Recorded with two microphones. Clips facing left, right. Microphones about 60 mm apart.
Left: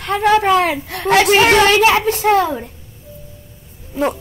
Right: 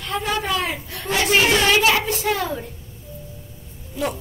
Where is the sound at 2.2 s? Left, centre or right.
Left.